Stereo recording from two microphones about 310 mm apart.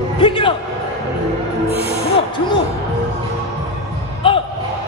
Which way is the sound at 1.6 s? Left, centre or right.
Right.